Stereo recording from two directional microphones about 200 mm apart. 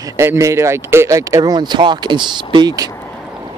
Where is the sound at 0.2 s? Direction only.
15° right (ahead or behind).